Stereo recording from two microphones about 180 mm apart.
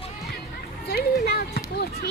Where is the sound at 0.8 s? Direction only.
65° left (ahead or behind).